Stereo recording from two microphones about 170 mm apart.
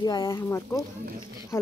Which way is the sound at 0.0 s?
25° left (ahead or behind).